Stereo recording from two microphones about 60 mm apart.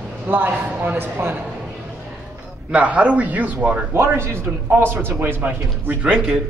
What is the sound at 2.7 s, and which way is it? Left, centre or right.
A man's voice, right.